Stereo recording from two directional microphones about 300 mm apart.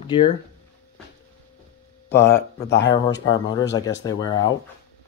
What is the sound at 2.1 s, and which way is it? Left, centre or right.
Speech, centre.